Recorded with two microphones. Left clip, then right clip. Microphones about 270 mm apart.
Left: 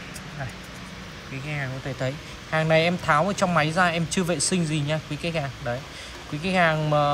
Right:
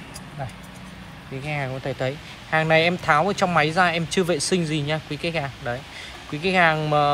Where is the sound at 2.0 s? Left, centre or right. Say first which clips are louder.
Right 3 dB; centre.